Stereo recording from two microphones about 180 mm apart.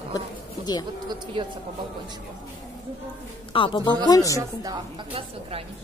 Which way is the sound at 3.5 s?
30° left (ahead or behind).